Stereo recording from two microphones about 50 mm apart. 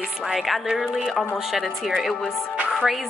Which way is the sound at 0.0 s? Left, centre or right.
Centre.